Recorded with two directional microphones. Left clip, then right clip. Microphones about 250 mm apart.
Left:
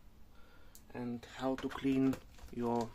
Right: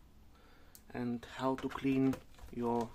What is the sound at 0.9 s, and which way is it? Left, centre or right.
Speech, right.